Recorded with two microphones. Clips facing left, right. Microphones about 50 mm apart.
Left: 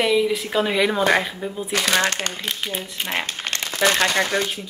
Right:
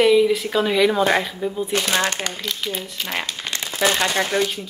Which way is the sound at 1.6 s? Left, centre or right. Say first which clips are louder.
Left 4 dB; left.